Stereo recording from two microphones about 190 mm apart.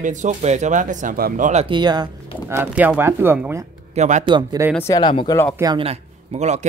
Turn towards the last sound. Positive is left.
turn(degrees=-35)  # may be behind; listen again after turning